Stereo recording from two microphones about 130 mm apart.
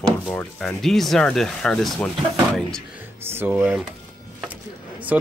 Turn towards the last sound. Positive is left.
turn(degrees=-10)  # may be behind; listen again after turning